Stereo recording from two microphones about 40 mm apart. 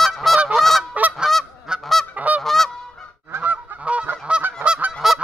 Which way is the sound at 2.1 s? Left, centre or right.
Right.